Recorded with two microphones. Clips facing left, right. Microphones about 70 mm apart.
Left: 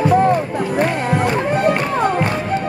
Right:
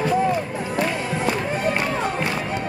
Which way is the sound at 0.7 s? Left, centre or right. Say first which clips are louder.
Left 6 dB; left.